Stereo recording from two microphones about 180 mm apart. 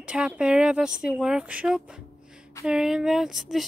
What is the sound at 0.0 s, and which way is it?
Speech, 5° right (ahead or behind).